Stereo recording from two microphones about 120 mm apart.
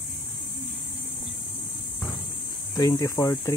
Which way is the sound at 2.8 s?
30° left (ahead or behind).